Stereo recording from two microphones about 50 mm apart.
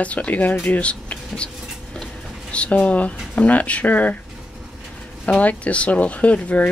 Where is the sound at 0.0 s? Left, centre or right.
Left.